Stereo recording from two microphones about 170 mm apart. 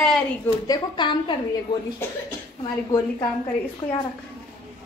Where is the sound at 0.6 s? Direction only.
25° left (ahead or behind).